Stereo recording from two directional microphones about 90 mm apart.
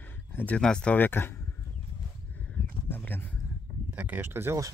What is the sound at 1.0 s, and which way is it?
Speech, 25° left (ahead or behind).